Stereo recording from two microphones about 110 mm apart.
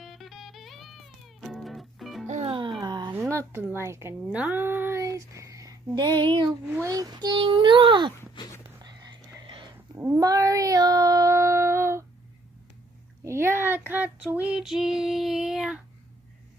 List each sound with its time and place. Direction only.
0.0 s music: centre (ahead or behind)
2.2 s music: 90° right
2.8 s a sound: 40° right (ahead or behind)
3.2 s a woman's voice: 25° right (ahead or behind)
5.0 s child singing: 30° right (ahead or behind)
6.7 s speech: 30° right (ahead or behind); by 8.1 s 45° right (ahead or behind)
8.6 s whispering: 35° right (ahead or behind)
9.9 s cat: 25° right (ahead or behind)
13.2 s child singing: 25° right (ahead or behind); by 15.8 s 5° right (ahead or behind)